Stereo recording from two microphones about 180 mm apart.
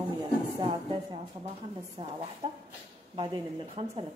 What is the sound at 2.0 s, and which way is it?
A woman's voice, 35° right (ahead or behind).